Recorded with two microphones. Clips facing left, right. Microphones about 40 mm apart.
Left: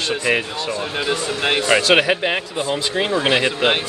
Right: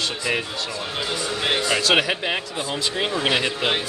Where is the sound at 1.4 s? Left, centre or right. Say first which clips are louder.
Left 5 dB; left.